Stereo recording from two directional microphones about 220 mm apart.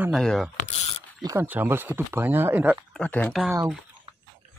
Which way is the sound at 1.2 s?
15° right (ahead or behind).